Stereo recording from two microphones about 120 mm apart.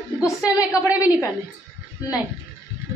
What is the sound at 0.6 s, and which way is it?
Speech, 15° right (ahead or behind).